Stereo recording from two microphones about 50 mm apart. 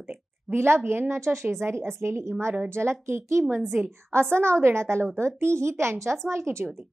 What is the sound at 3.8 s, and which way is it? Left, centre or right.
A woman's voice, right.